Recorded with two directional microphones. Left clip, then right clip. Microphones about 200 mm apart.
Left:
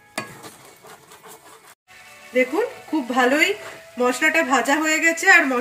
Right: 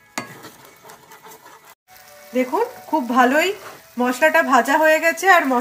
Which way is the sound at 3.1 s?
55° right (ahead or behind).